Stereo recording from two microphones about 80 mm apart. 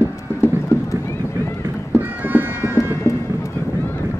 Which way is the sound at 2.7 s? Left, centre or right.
Left.